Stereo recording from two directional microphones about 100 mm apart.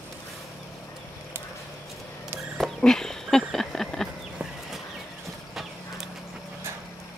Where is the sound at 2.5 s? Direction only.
5° left (ahead or behind).